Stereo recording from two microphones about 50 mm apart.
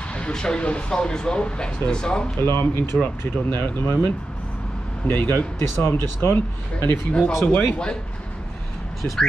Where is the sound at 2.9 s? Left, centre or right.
Centre.